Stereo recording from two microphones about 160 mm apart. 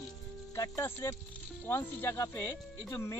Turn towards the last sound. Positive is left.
turn(degrees=15)  # may be behind; listen again after turning